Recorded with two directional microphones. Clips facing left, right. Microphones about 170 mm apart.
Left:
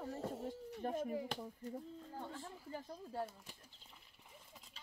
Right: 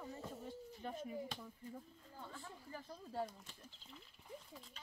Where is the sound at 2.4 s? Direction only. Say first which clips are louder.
Left 4 dB; 25° left (ahead or behind).